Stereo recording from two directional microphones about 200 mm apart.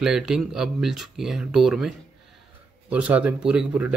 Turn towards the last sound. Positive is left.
turn(degrees=-5)  # may be behind; listen again after turning